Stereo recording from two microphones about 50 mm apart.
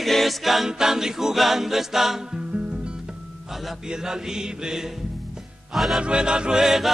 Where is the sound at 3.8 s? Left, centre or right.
Centre.